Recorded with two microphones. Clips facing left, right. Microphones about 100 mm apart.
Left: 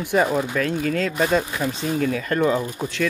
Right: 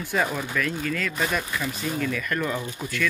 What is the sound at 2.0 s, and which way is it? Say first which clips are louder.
Speech: left 6 dB; 45° left (ahead or behind).